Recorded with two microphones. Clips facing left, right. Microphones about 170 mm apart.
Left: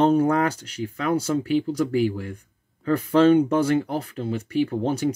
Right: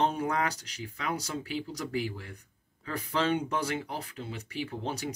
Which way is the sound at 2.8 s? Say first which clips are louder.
Left 13 dB; 50° left (ahead or behind).